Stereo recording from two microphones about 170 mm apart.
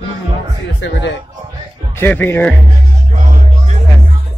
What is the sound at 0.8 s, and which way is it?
Speech, 90° left.